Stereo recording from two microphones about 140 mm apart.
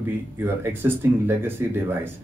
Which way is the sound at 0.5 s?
15° right (ahead or behind).